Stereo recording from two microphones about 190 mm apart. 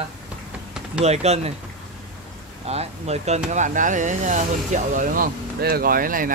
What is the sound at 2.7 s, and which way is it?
Speech, 35° right (ahead or behind).